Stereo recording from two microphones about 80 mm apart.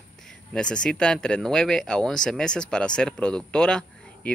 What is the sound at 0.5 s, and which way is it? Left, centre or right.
Speech, centre.